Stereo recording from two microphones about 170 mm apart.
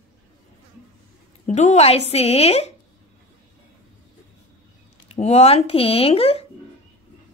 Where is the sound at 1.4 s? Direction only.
45° left (ahead or behind).